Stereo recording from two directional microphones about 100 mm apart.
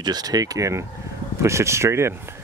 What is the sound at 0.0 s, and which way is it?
Speech, 40° right (ahead or behind).